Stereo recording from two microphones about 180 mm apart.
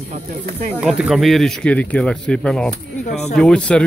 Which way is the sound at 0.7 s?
5° right (ahead or behind).